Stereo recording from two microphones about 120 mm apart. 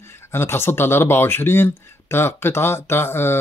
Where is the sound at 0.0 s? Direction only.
20° left (ahead or behind).